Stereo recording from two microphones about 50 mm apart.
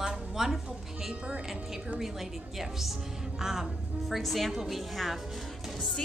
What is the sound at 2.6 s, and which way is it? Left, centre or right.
A woman's voice, centre.